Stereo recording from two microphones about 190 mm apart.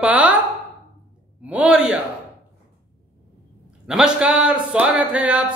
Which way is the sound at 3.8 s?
5° right (ahead or behind).